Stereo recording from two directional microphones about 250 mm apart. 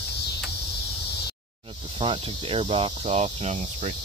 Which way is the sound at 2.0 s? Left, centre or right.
Right.